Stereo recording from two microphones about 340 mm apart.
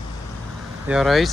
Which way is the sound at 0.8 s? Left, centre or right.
Centre.